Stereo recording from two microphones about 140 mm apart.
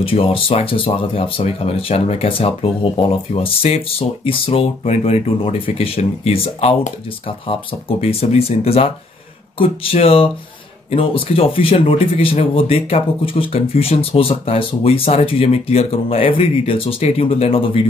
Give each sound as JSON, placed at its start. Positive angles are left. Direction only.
{"t": 0.0, "sound": "speech", "side_deg": 40}
{"t": 8.0, "sound": "speech", "side_deg": 45}